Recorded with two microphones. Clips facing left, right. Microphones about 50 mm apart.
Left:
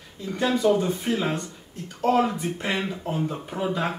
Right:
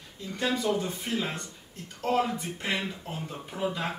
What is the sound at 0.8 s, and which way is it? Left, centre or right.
A man's voice, centre.